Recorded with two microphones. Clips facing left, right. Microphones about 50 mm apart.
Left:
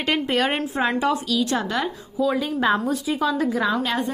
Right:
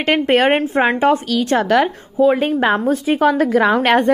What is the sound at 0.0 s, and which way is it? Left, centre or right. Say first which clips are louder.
A woman's voice: right 7 dB; right.